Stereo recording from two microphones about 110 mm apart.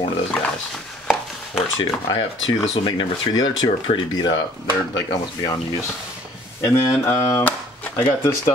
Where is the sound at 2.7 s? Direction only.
40° left (ahead or behind).